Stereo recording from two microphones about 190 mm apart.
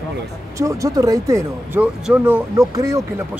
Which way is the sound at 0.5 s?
15° right (ahead or behind).